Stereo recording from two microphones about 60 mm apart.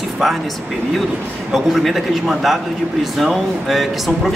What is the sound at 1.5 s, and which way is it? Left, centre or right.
A man's voice, centre.